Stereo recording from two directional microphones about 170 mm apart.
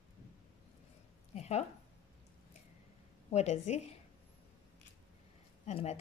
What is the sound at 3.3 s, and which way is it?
Speech, 40° left (ahead or behind).